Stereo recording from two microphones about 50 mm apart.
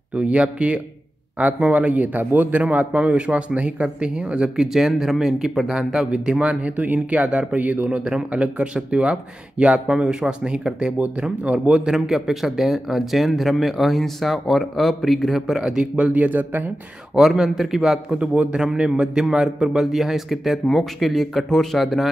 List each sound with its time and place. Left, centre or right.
0.1 s speech: right
6.4 s speech: right
9.8 s speech: centre
11.9 s speech: centre
16.1 s speech: right
17.3 s speech: centre
18.1 s speech: right; by 22.1 s centre